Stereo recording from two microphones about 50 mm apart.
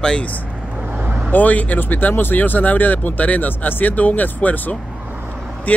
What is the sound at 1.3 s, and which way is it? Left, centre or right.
Speech, left.